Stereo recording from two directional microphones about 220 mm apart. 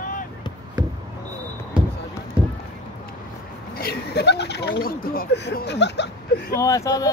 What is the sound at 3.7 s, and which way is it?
Speech, 45° left (ahead or behind).